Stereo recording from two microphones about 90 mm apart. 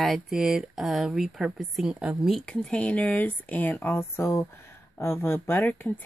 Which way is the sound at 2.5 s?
10° left (ahead or behind).